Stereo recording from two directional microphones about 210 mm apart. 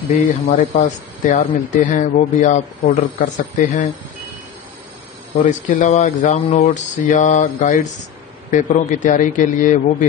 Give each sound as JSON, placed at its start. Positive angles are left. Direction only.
{"t": 0.1, "sound": "speech", "side_deg": 40}
{"t": 5.4, "sound": "speech", "side_deg": 35}